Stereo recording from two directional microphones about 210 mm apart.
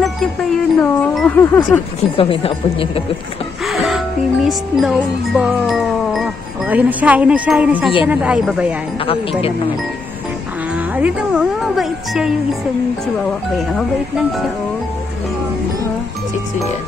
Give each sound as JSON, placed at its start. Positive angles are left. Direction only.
{"t": 0.7, "sound": "speech", "side_deg": 5}
{"t": 2.0, "sound": "speech", "side_deg": 25}
{"t": 3.6, "sound": "speech", "side_deg": 0}
{"t": 11.0, "sound": "speech", "side_deg": -5}
{"t": 13.6, "sound": "speech", "side_deg": 0}